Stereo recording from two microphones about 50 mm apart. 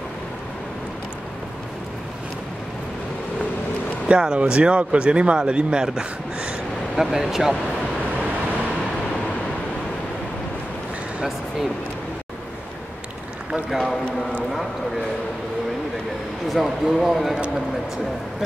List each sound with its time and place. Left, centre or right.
4.1 s speech: right
7.0 s speech: centre
13.7 s speech: centre
16.4 s speech: centre